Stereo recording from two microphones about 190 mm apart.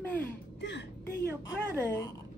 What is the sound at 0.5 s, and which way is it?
Speech, 65° left (ahead or behind).